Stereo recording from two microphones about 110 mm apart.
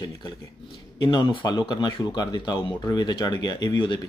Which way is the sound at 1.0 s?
45° left (ahead or behind).